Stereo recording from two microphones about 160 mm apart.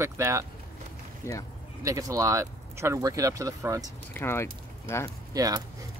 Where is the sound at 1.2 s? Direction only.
15° left (ahead or behind).